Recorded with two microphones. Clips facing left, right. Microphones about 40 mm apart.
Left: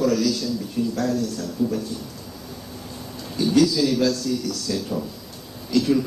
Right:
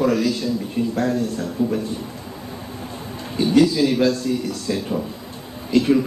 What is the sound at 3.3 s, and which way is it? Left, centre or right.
A man's voice, right.